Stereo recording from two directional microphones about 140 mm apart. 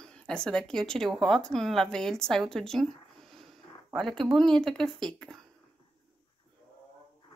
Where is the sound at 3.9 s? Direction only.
Centre (ahead or behind).